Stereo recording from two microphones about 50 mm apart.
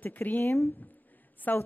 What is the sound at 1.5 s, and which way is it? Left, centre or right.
Speech, left.